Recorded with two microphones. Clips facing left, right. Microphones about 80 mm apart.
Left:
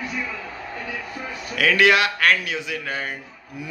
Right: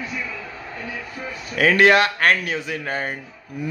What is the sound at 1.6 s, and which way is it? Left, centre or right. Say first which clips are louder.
Speech: right 3 dB; right.